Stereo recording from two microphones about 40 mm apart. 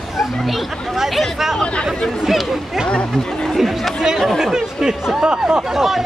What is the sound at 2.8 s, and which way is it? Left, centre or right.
Speech, left.